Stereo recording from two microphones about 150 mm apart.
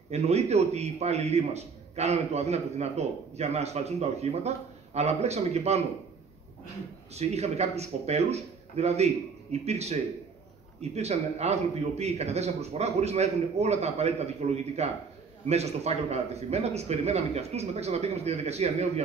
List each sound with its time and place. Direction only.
0.1 s a man's voice: 45° right (ahead or behind)
7.2 s a man's voice: 45° right (ahead or behind)